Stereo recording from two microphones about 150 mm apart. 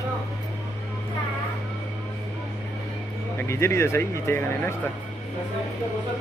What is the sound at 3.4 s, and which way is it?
Speech, 15° left (ahead or behind).